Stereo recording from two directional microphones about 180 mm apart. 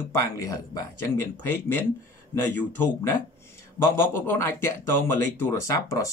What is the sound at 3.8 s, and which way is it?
Speech, 15° left (ahead or behind).